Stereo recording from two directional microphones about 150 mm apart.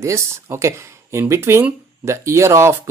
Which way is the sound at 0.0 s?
20° right (ahead or behind).